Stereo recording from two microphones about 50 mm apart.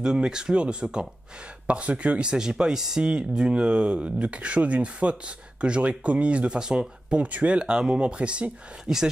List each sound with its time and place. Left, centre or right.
0.0 s speech: centre
8.8 s speech: centre